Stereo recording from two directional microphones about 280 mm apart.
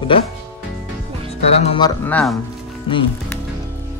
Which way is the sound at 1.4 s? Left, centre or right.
Left.